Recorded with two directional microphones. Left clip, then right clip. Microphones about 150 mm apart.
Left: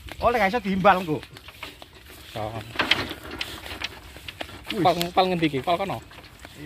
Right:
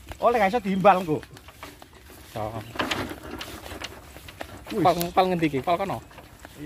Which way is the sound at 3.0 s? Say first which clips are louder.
Left 2 dB; 30° right (ahead or behind).